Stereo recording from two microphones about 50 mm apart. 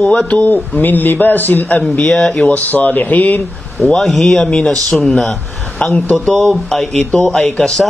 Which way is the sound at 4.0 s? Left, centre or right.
Centre.